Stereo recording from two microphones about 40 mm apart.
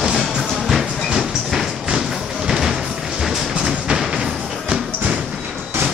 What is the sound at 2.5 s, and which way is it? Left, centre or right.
Music, centre.